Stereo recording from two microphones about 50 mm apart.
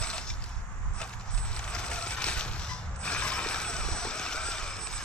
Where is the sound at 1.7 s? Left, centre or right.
Centre.